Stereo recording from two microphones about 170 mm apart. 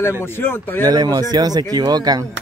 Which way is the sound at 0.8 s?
25° right (ahead or behind).